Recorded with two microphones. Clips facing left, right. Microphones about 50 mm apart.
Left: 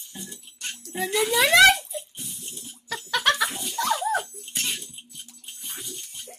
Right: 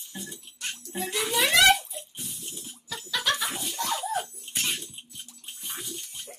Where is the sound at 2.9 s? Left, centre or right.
Left.